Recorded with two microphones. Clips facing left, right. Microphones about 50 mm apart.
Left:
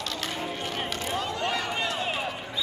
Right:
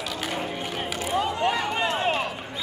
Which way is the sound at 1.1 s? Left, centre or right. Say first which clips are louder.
Right 6 dB; centre.